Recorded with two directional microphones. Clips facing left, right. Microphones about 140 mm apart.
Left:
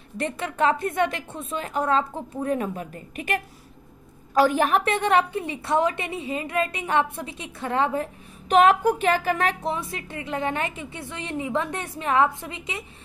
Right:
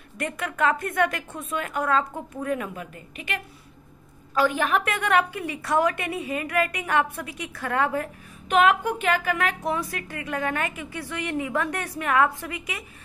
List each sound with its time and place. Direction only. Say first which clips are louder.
0.2 s a woman's voice: left 1 dB; 30° left (ahead or behind)